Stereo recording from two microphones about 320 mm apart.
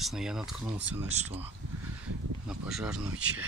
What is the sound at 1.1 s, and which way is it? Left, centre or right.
Speech, centre.